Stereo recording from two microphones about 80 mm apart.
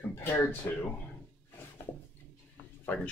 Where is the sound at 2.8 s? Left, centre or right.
Centre.